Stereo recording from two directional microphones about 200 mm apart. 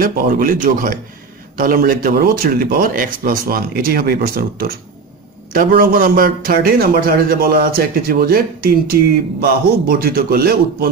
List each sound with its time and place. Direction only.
0.0 s a man's voice: 45° right (ahead or behind)